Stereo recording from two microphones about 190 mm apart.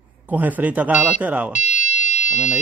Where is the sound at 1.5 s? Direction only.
40° left (ahead or behind).